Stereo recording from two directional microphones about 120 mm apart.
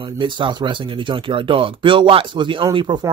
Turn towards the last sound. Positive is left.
turn(degrees=-40)  # may be behind; listen again after turning